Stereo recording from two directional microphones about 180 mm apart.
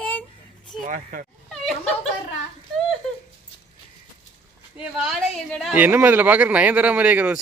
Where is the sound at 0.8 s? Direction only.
45° right (ahead or behind).